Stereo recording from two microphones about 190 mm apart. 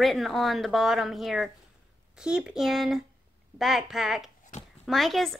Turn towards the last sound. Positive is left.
turn(degrees=0)  # may be behind; listen again after turning